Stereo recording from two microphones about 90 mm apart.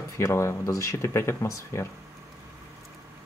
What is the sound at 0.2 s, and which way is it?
Speech, 30° left (ahead or behind).